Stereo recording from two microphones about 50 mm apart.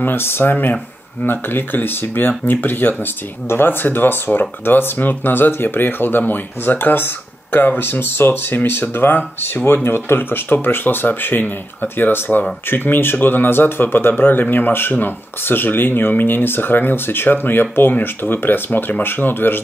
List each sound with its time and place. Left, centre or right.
0.0 s speech: left